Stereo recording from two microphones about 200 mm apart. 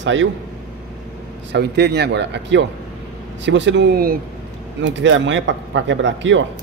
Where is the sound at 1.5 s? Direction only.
55° right (ahead or behind).